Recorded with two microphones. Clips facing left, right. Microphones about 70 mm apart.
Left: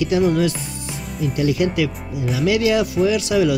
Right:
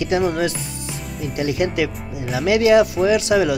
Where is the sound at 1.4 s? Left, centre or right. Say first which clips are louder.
Left 1 dB; right.